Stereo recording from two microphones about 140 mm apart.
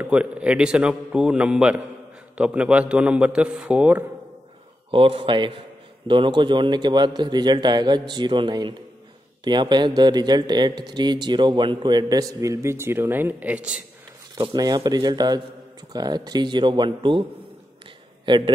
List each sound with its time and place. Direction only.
0.0 s a man's voice: 10° right (ahead or behind)
4.9 s speech: 40° right (ahead or behind); by 13.7 s 10° right (ahead or behind)
14.3 s speech: 30° right (ahead or behind)
18.2 s a man's voice: 35° right (ahead or behind)